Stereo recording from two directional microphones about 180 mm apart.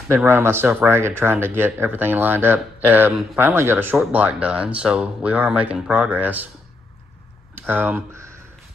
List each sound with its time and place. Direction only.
0.1 s speech: 10° right (ahead or behind)
7.6 s speech: 10° right (ahead or behind)